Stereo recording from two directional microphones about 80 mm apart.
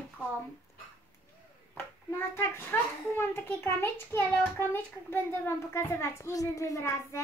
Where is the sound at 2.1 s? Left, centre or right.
Left.